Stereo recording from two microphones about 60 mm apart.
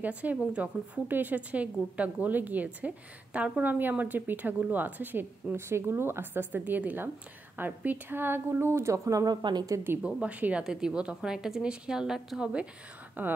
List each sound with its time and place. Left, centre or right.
0.0 s a woman's voice: right
10.0 s a woman's voice: right
10.6 s a woman's voice: centre
13.2 s a woman's voice: right